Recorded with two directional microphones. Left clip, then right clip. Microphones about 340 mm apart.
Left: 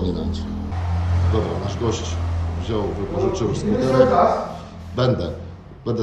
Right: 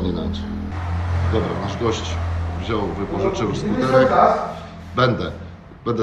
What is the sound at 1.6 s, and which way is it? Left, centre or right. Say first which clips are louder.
A man's voice: right 2 dB; centre.